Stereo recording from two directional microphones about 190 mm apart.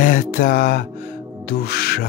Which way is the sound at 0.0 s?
45° left (ahead or behind).